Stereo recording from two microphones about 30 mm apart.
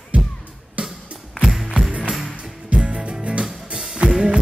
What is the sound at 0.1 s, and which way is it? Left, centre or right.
Music, right.